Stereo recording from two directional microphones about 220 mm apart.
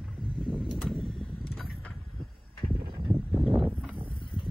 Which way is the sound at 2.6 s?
20° right (ahead or behind).